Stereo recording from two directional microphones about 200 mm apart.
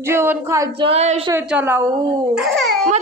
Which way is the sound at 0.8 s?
30° right (ahead or behind).